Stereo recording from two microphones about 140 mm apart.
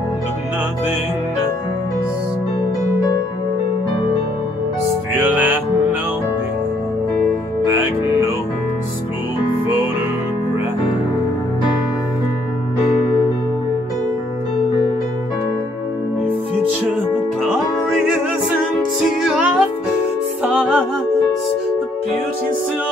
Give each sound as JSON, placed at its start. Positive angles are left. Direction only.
{"t": 7.6, "sound": "music", "side_deg": -25}
{"t": 17.9, "sound": "music", "side_deg": -5}
{"t": 20.4, "sound": "music", "side_deg": -10}